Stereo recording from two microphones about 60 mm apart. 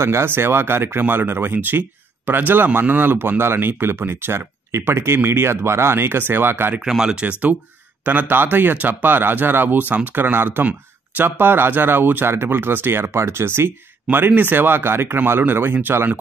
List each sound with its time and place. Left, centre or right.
0.0 s speech: right
6.8 s speech: centre
8.0 s speech: right